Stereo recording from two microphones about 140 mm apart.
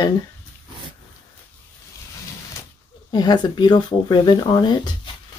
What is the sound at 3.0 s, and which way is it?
Speech, 30° left (ahead or behind).